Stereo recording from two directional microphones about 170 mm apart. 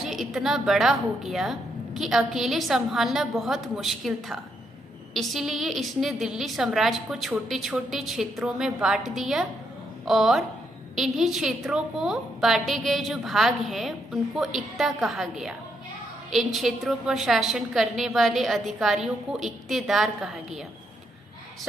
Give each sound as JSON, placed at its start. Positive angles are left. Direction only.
{"t": 0.0, "sound": "a woman's voice", "side_deg": 0}